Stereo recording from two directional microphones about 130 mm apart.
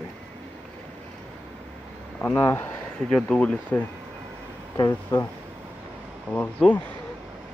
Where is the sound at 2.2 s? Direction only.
15° left (ahead or behind).